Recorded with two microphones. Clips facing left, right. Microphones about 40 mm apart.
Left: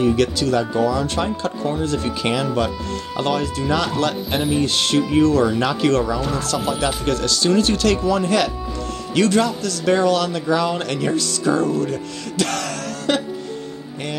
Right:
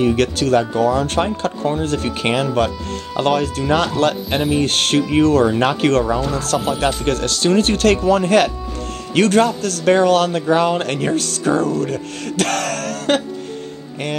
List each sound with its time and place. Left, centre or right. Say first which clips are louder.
0.0 s speech: right 1 dB; right
1.6 s speech: right 2 dB; right